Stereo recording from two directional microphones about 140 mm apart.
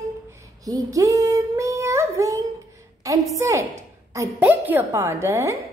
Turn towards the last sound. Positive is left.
turn(degrees=-20)  # may be behind; listen again after turning